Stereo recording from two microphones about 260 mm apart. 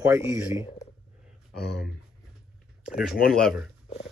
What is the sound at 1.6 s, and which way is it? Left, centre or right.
Speech, centre.